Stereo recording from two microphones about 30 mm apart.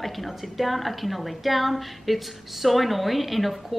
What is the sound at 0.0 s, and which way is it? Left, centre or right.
A woman's voice, centre.